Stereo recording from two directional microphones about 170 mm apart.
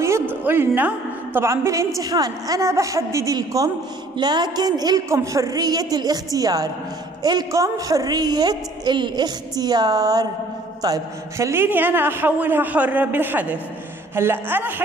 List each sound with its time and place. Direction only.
0.0 s a woman's voice: 15° right (ahead or behind)